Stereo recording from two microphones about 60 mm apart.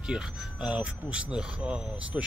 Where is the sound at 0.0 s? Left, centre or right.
Centre.